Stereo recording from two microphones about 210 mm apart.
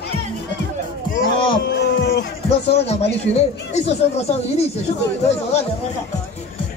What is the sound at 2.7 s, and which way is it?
Speech, 30° left (ahead or behind).